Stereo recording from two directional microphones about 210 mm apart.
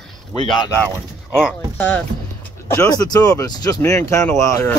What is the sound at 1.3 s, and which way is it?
Speech, 5° left (ahead or behind).